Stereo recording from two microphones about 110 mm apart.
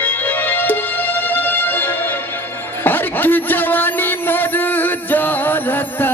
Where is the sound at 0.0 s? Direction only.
20° left (ahead or behind).